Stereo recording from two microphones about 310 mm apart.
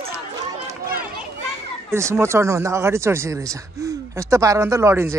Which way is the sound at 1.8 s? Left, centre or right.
Centre.